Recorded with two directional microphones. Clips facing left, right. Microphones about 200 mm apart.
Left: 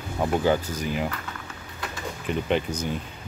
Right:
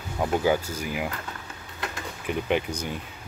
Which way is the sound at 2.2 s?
10° right (ahead or behind).